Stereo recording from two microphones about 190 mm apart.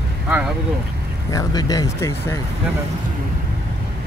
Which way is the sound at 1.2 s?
20° left (ahead or behind).